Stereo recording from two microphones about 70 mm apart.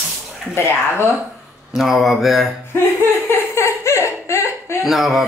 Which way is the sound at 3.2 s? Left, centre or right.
Left.